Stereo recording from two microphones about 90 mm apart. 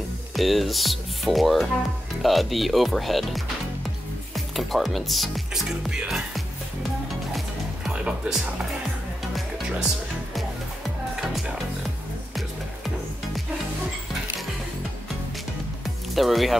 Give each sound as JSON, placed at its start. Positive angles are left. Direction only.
{"t": 0.3, "sound": "speech", "side_deg": 0}
{"t": 4.6, "sound": "speech", "side_deg": 0}
{"t": 7.3, "sound": "music", "side_deg": -5}
{"t": 16.2, "sound": "speech", "side_deg": 0}